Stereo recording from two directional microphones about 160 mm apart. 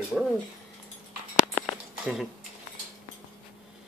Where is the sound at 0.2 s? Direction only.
Centre (ahead or behind).